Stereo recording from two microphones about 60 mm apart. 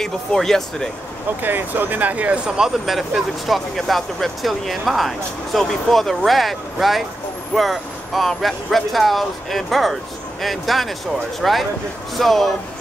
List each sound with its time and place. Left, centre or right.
0.0 s speech: centre
1.4 s speech: right; by 2.7 s centre
2.8 s speech: centre